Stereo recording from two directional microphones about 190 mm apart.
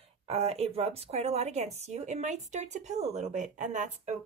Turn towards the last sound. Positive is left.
turn(degrees=-40)  # may be behind; listen again after turning